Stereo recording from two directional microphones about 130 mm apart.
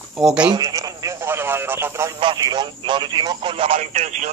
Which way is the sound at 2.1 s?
35° right (ahead or behind).